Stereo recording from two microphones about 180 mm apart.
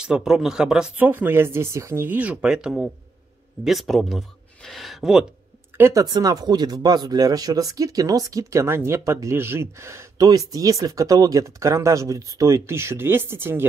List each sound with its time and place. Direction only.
0.0 s speech: 5° right (ahead or behind)
5.8 s speech: 15° right (ahead or behind)